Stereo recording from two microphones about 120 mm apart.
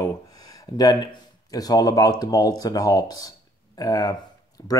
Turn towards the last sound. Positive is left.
turn(degrees=30)  # may be behind; listen again after turning